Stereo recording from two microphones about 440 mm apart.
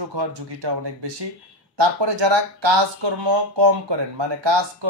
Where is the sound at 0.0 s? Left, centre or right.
Right.